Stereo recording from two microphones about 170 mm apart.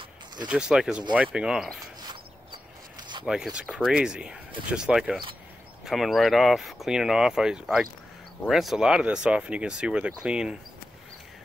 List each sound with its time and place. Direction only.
0.5 s speech: 5° right (ahead or behind)
2.0 s a sound: 25° right (ahead or behind)
3.3 s speech: 5° right (ahead or behind)